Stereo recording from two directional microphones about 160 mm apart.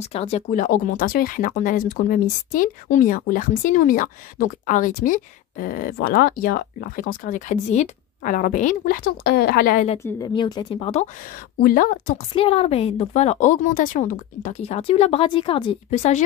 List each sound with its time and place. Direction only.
0.0 s a woman's voice: 40° left (ahead or behind)
0.5 s speech: 60° left (ahead or behind)
9.9 s speech: 15° left (ahead or behind)
10.3 s speech: 30° left (ahead or behind)
11.6 s speech: 60° left (ahead or behind)
12.4 s a woman's voice: 35° left (ahead or behind)
15.9 s speech: 45° left (ahead or behind)